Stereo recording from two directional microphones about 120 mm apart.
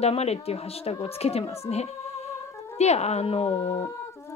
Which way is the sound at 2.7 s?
65° left (ahead or behind).